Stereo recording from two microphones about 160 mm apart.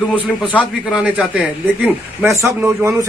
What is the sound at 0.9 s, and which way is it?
A man's voice, 5° right (ahead or behind).